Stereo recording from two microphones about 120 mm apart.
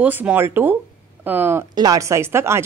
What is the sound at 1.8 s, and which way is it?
Speech, 30° right (ahead or behind).